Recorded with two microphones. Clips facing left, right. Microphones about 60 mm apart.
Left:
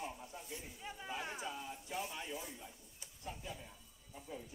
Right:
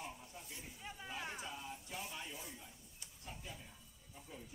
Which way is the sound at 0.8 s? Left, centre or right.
Centre.